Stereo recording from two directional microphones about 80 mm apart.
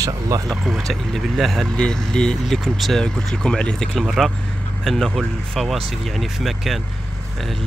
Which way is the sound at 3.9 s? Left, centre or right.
Centre.